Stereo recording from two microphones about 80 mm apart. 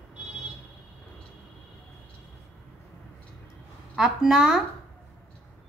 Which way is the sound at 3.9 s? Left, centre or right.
Centre.